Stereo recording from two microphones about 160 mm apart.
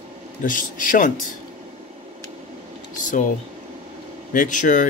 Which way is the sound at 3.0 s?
55° left (ahead or behind).